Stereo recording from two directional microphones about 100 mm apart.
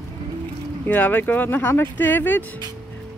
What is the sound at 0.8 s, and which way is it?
Speech, 15° left (ahead or behind).